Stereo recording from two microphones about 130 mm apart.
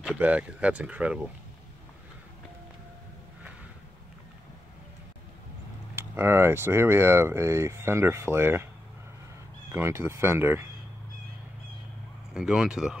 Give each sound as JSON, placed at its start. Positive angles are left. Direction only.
{"t": 0.0, "sound": "speech", "side_deg": -10}
{"t": 5.9, "sound": "speech", "side_deg": -20}
{"t": 9.7, "sound": "speech", "side_deg": -20}
{"t": 12.4, "sound": "speech", "side_deg": -5}